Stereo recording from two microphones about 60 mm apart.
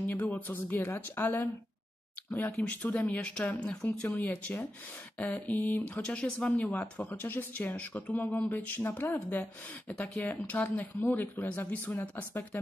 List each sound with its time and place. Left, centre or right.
0.0 s speech: left
2.5 s speech: left